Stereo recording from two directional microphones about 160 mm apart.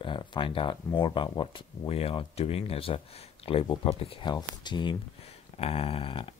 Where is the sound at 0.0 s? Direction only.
30° left (ahead or behind).